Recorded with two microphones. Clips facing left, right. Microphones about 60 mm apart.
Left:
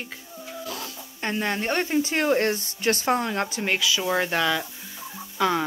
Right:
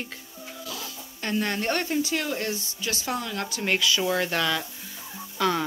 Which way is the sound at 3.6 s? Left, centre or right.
Centre.